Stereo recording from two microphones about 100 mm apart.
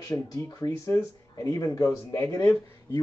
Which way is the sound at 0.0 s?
35° left (ahead or behind).